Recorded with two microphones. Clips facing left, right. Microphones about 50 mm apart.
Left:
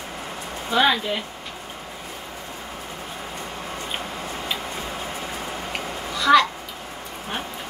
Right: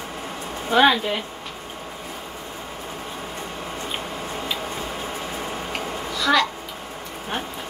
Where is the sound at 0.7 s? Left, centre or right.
Right.